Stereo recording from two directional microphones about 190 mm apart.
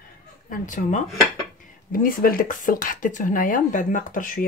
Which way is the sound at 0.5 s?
40° left (ahead or behind).